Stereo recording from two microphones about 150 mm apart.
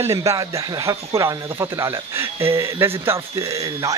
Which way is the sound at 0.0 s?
20° right (ahead or behind).